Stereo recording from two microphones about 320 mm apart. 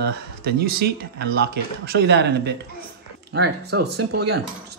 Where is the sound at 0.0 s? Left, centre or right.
Right.